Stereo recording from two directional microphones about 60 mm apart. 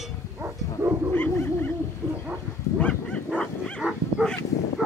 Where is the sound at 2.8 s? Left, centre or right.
Centre.